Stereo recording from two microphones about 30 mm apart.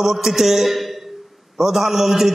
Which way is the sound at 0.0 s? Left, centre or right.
Centre.